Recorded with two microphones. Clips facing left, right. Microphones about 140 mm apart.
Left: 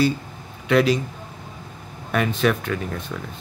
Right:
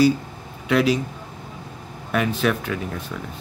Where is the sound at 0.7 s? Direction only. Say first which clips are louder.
Left 1 dB; 5° right (ahead or behind).